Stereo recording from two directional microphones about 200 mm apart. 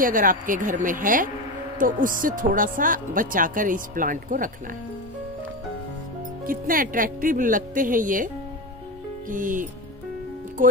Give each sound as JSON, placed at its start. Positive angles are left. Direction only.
{"t": 0.0, "sound": "speech", "side_deg": -45}
{"t": 6.4, "sound": "speech", "side_deg": -45}
{"t": 9.3, "sound": "speech", "side_deg": -40}